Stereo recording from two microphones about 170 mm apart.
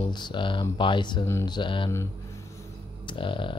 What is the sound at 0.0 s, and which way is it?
Speech, 25° left (ahead or behind).